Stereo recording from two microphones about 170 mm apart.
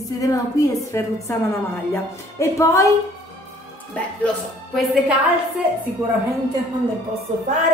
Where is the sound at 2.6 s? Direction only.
20° left (ahead or behind).